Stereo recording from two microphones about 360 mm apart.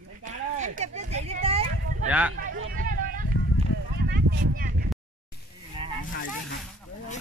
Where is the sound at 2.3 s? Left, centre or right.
Right.